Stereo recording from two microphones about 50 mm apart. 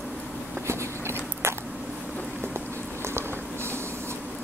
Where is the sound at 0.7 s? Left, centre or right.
Right.